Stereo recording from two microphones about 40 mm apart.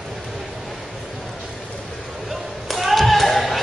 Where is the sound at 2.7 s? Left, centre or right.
Centre.